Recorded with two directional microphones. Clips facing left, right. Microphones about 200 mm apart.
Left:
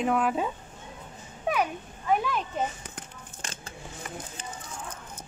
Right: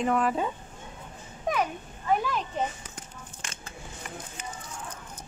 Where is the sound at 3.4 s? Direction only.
35° left (ahead or behind).